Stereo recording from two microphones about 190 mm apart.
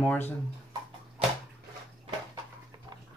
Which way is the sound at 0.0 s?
10° left (ahead or behind).